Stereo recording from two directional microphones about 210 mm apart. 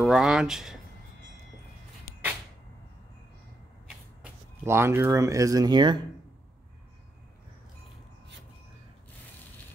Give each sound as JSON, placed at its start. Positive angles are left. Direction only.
{"t": 0.0, "sound": "speech", "side_deg": 0}
{"t": 4.2, "sound": "speech", "side_deg": -10}